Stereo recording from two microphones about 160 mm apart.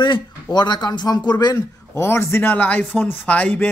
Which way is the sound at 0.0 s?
30° left (ahead or behind).